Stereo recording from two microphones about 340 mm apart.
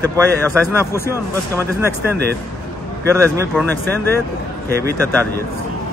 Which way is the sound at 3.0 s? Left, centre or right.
Centre.